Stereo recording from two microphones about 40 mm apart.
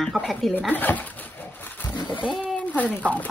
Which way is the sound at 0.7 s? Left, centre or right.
Left.